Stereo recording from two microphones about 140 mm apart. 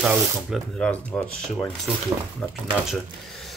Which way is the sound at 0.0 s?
5° right (ahead or behind).